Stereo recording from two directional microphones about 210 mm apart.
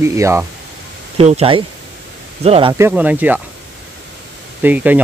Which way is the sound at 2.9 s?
5° right (ahead or behind).